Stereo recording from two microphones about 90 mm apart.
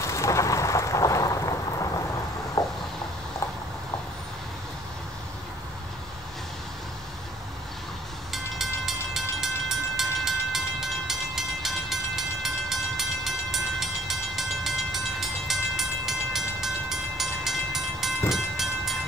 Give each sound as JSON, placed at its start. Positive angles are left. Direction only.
{"t": 0.0, "sound": "thunder", "side_deg": 35}
{"t": 2.6, "sound": "vehicle", "side_deg": 50}
{"t": 8.3, "sound": "train", "side_deg": -5}